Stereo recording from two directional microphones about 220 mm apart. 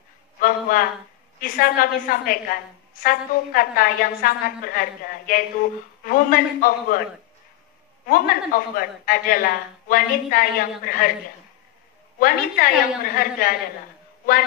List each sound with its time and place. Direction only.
0.4 s a sound: 40° left (ahead or behind)
1.4 s a woman's voice: 40° left (ahead or behind)
8.1 s a woman's voice: 40° left (ahead or behind)
12.2 s a woman's voice: 40° left (ahead or behind)